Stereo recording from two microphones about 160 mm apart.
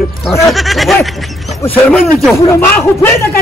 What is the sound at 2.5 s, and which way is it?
Speech, 15° left (ahead or behind).